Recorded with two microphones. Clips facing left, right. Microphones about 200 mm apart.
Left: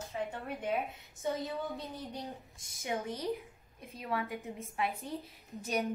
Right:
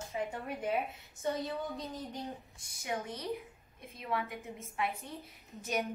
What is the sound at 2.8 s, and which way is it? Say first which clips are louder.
A woman's voice: left 2 dB; 30° left (ahead or behind).